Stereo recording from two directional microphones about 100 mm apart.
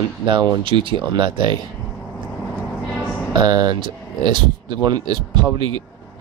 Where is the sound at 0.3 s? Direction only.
55° right (ahead or behind).